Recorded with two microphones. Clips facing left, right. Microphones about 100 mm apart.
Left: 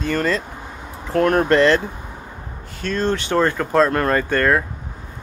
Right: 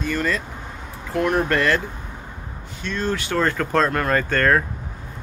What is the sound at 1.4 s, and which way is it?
Speech, 25° left (ahead or behind).